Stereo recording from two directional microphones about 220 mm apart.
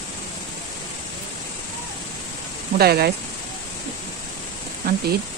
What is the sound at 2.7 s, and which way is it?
Speech, 45° right (ahead or behind).